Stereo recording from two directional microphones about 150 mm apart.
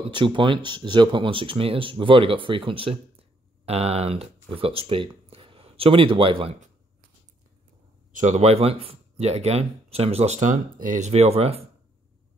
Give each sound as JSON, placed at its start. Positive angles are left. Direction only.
{"t": 0.1, "sound": "speech", "side_deg": -30}
{"t": 8.1, "sound": "speech", "side_deg": -55}